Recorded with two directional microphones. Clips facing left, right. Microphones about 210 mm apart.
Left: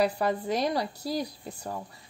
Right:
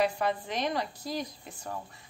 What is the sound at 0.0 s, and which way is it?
A woman's voice, 40° left (ahead or behind).